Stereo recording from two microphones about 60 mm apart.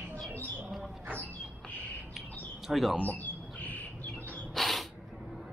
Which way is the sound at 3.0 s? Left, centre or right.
Left.